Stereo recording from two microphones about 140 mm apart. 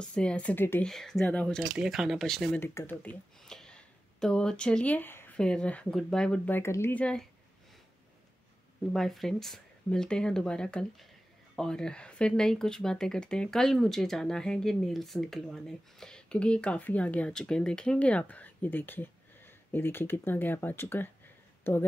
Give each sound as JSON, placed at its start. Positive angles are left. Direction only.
{"t": 0.0, "sound": "speech", "side_deg": 5}
{"t": 0.8, "sound": "speech", "side_deg": 5}
{"t": 2.6, "sound": "speech", "side_deg": 15}
{"t": 8.9, "sound": "speech", "side_deg": 0}